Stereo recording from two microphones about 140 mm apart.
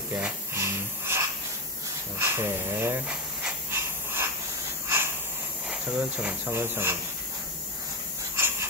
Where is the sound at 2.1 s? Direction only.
15° right (ahead or behind).